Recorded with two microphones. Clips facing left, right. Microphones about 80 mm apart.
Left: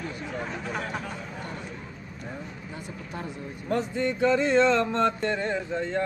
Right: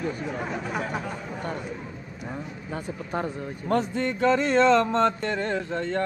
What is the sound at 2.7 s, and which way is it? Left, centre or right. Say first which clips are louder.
Speech: right 9 dB; right.